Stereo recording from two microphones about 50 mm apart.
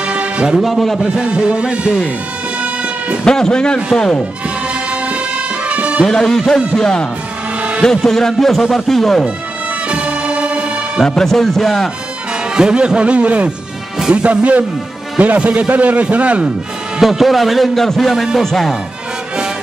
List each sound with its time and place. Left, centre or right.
0.0 s music: right
0.6 s speech: centre
1.1 s a man's voice: centre
2.6 s music: right
3.3 s a man's voice: centre
5.7 s music: right
6.0 s a man's voice: centre
9.8 s music: right
11.1 s speech: centre
12.5 s a man's voice: centre
17.0 s a man's voice: centre